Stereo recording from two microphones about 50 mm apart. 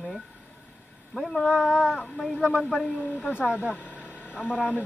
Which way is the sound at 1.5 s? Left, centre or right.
Centre.